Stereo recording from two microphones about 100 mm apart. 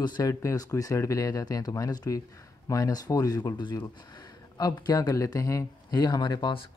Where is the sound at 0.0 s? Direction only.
45° left (ahead or behind).